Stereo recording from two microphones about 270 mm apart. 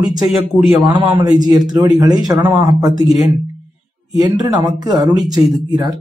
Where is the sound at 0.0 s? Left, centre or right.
Centre.